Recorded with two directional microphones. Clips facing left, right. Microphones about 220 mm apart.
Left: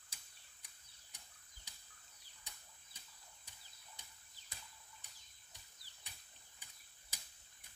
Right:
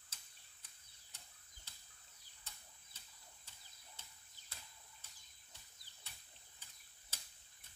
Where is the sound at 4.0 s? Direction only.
15° left (ahead or behind).